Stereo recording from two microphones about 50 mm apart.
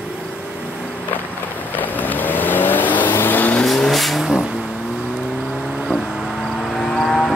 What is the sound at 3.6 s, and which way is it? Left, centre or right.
Vehicle, centre.